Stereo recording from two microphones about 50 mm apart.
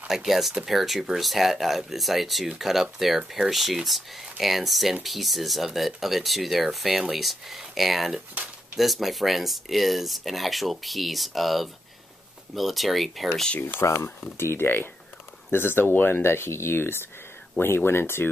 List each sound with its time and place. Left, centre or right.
0.1 s speech: centre
13.6 s speech: left
13.8 s speech: left
14.3 s speech: left